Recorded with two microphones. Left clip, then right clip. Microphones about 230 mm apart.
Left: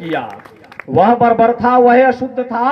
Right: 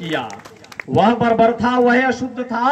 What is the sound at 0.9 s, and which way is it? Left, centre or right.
A man's voice, right.